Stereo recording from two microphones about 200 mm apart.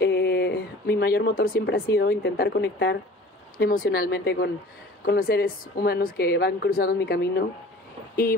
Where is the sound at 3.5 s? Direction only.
45° left (ahead or behind).